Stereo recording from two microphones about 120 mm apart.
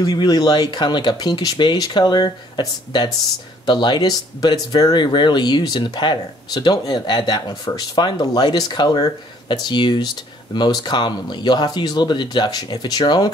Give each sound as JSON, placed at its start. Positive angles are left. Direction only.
{"t": 0.0, "sound": "speech", "side_deg": 35}